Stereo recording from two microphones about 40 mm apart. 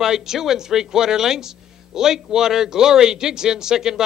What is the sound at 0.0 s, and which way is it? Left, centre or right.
A man's voice, centre.